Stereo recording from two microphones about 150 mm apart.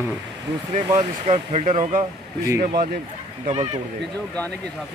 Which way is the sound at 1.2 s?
45° right (ahead or behind).